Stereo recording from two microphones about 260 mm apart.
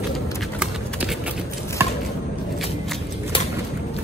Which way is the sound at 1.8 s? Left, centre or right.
Centre.